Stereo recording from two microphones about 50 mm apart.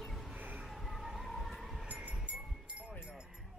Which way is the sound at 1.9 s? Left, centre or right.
Right.